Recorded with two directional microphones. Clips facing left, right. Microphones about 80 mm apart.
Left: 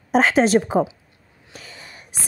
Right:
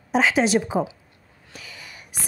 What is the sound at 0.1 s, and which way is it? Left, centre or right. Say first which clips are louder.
Speech: left 3 dB; left.